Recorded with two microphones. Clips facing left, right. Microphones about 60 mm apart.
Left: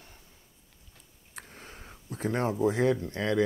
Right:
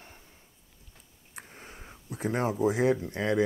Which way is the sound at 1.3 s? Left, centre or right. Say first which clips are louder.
Even; centre.